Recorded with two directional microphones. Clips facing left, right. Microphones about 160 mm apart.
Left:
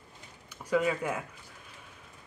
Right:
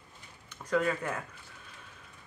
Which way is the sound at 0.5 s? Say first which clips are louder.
Left 1 dB; 10° left (ahead or behind).